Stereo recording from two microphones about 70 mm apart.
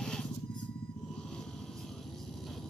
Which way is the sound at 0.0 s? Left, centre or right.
Centre.